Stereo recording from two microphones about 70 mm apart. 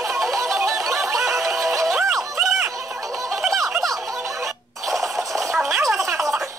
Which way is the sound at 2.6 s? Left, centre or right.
Right.